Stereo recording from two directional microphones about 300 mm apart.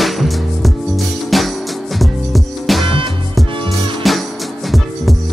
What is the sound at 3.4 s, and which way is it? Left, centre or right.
Music, centre.